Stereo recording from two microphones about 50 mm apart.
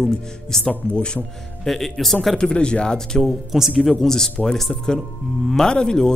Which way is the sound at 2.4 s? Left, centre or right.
Centre.